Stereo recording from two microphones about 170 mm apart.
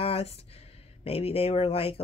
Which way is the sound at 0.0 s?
35° left (ahead or behind).